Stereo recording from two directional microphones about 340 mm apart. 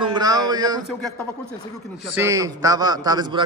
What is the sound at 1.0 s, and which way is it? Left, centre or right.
A man's voice, centre.